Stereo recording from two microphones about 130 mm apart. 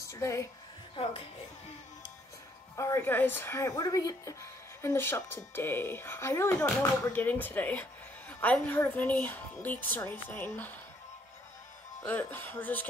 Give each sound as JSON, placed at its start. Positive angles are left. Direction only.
{"t": 0.1, "sound": "a woman's voice", "side_deg": 20}
{"t": 2.7, "sound": "a woman's voice", "side_deg": 20}
{"t": 12.1, "sound": "a woman's voice", "side_deg": 15}